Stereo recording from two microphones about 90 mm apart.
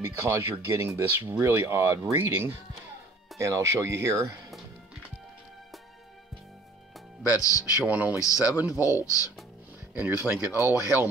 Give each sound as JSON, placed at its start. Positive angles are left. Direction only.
{"t": 0.2, "sound": "speech", "side_deg": -30}
{"t": 7.4, "sound": "speech", "side_deg": 40}
{"t": 7.8, "sound": "speech", "side_deg": -15}
{"t": 8.2, "sound": "speech", "side_deg": 40}
{"t": 9.9, "sound": "speech", "side_deg": -20}